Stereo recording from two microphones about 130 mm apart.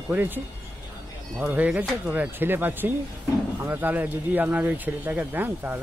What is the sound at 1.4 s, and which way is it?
Speech, 10° right (ahead or behind).